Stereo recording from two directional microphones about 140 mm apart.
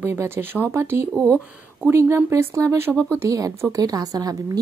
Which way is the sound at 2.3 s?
20° right (ahead or behind).